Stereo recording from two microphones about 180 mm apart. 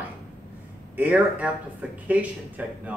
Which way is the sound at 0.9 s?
10° right (ahead or behind).